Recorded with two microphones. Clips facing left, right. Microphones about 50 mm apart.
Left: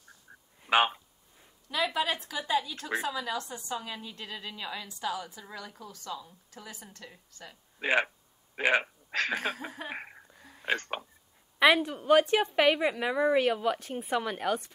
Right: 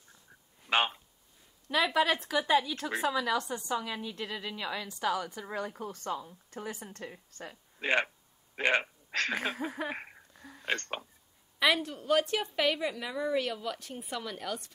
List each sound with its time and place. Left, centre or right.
0.7 s a sound: centre
2.0 s a woman's voice: right
7.8 s speech: centre
9.8 s laughter: centre
10.6 s speech: centre
11.6 s a woman's voice: left